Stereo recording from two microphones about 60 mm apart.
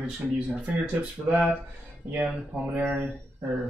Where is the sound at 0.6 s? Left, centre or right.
Right.